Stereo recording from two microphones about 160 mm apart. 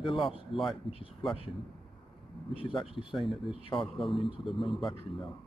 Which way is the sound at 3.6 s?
30° left (ahead or behind).